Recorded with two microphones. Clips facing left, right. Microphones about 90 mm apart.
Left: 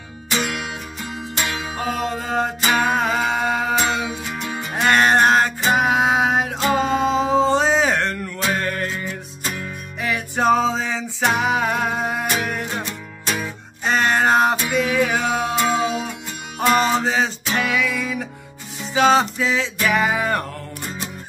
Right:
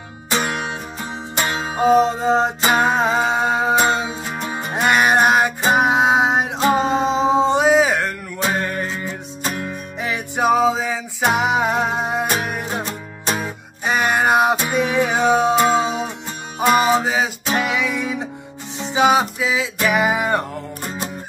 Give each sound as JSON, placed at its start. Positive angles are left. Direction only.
{"t": 0.3, "sound": "music", "side_deg": -35}
{"t": 1.8, "sound": "music", "side_deg": -25}
{"t": 4.7, "sound": "music", "side_deg": -15}
{"t": 5.6, "sound": "music", "side_deg": -25}
{"t": 9.0, "sound": "music", "side_deg": -25}
{"t": 12.8, "sound": "music", "side_deg": -35}
{"t": 13.8, "sound": "music", "side_deg": -10}
{"t": 16.5, "sound": "music", "side_deg": -10}
{"t": 17.6, "sound": "music", "side_deg": -20}